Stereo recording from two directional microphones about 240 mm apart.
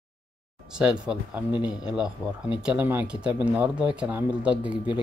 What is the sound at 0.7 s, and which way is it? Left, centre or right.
Speech, centre.